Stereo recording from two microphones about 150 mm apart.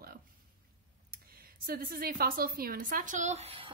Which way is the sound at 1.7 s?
80° right.